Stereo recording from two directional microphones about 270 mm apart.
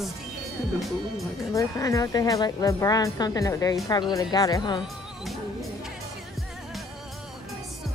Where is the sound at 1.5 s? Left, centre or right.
Centre.